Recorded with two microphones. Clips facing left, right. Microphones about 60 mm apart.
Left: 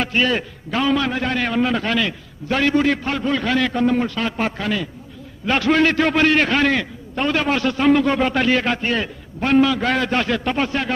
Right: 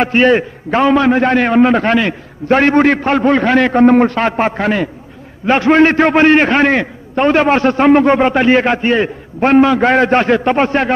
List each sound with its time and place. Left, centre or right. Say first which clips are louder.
0.0 s a man's voice: right 9 dB; right
5.5 s a man's voice: right 7 dB; right